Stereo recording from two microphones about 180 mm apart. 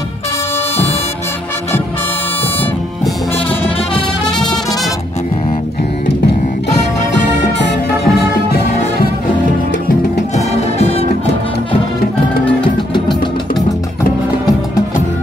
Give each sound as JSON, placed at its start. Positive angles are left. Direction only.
{"t": 7.5, "sound": "music", "side_deg": 75}
{"t": 10.3, "sound": "music", "side_deg": 35}